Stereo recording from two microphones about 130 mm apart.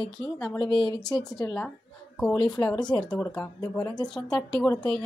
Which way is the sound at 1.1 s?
5° left (ahead or behind).